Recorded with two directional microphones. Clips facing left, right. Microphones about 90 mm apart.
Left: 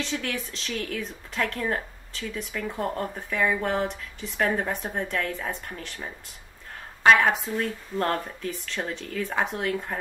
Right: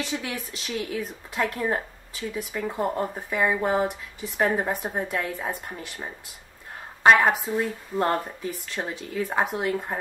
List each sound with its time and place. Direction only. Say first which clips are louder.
0.0 s speech: even; 10° right (ahead or behind)